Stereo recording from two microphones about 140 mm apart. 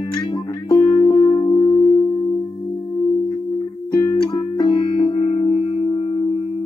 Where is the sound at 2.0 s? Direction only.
30° left (ahead or behind).